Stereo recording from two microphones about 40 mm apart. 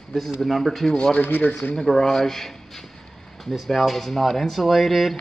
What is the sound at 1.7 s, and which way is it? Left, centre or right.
Speech, centre.